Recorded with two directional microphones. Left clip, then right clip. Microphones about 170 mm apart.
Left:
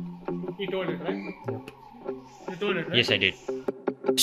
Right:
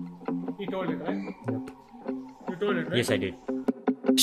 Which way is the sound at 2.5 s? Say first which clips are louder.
Left 2 dB; 10° right (ahead or behind).